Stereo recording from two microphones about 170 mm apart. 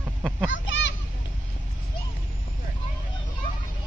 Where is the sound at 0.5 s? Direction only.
90° left.